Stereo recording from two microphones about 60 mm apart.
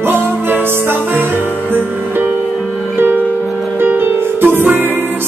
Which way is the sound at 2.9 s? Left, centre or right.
Right.